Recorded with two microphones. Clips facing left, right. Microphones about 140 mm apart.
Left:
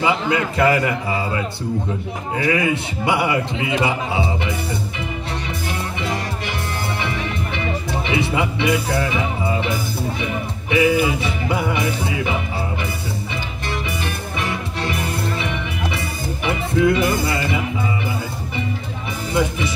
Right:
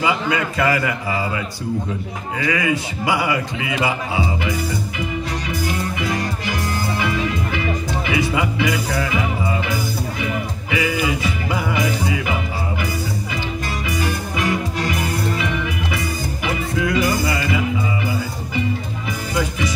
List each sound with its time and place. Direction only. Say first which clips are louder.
0.0 s a man's voice: left 1 dB; 25° left (ahead or behind)
2.5 s a man's voice: left 1 dB; 25° left (ahead or behind)
5.9 s music: right 1 dB; 25° left (ahead or behind)
10.7 s music: left 5 dB; 25° left (ahead or behind)
14.8 s music: right 1 dB; 25° left (ahead or behind)
16.4 s music: left 5 dB; 25° left (ahead or behind)
19.3 s music: left 2 dB; 25° left (ahead or behind)